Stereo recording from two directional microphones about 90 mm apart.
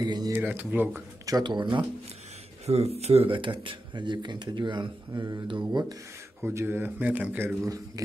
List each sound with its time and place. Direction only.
0.0 s speech: 50° right (ahead or behind)
0.3 s speech: 25° right (ahead or behind)
1.4 s speech: 60° right (ahead or behind)
2.7 s speech: 90° right
3.2 s speech: 70° right (ahead or behind); by 5.9 s 50° right (ahead or behind)
6.4 s speech: 25° right (ahead or behind)
7.6 s a man's voice: 40° right (ahead or behind)